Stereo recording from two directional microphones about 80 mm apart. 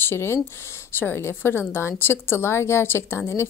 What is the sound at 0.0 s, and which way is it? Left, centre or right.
A woman's voice, left.